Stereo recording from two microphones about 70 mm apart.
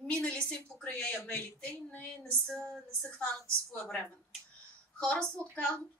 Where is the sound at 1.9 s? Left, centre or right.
Centre.